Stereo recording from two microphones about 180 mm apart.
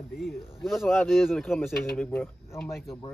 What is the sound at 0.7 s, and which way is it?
Speech, centre (ahead or behind).